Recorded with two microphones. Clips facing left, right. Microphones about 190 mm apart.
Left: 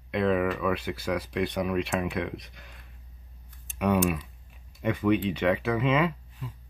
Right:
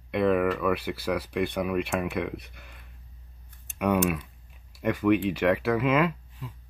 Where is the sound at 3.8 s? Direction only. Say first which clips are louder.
Even; 5° right (ahead or behind).